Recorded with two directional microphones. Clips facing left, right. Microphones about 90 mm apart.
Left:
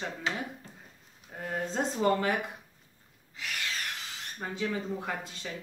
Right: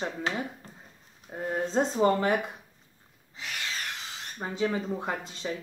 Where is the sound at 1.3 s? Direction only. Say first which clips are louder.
Right 5 dB; 25° right (ahead or behind).